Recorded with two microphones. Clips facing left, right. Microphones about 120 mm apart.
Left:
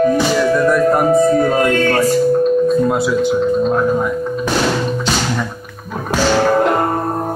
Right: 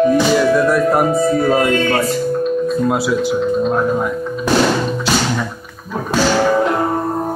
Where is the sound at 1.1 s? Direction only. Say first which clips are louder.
Left 4 dB; 45° left (ahead or behind).